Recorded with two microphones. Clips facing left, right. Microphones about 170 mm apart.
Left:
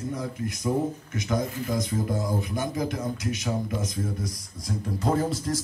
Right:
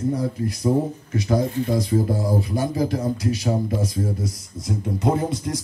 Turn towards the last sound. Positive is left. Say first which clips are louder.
# right 3 dB
turn(degrees=-20)  # may be behind; listen again after turning